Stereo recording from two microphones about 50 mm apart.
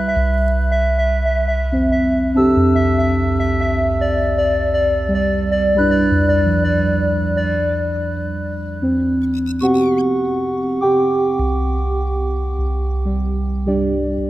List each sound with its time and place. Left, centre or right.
0.0 s music: centre
8.8 s music: centre
13.7 s music: centre